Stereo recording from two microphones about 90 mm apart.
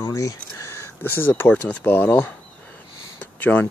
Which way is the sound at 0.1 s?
35° left (ahead or behind).